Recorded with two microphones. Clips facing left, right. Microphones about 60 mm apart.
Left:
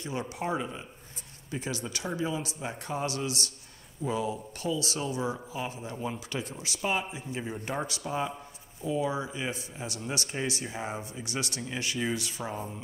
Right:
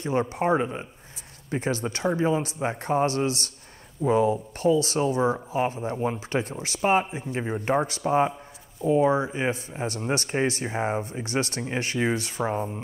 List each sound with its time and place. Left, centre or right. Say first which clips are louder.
0.0 s a man's voice: right 9 dB; right